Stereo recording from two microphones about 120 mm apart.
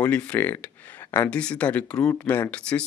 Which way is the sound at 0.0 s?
10° left (ahead or behind).